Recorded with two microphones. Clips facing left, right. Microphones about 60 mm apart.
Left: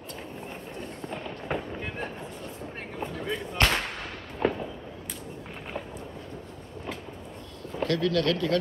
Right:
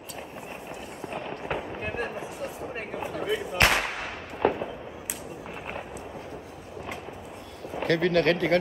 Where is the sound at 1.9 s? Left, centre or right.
Right.